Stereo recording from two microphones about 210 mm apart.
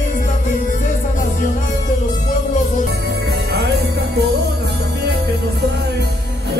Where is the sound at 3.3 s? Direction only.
50° right (ahead or behind).